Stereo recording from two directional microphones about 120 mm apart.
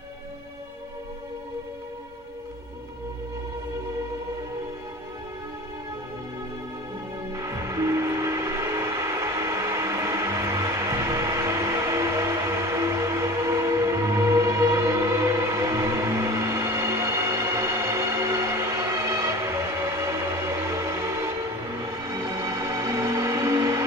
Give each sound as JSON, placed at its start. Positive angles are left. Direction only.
{"t": 7.3, "sound": "music", "side_deg": -25}